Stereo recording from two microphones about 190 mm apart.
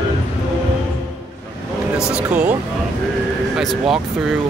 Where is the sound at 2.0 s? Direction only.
5° right (ahead or behind).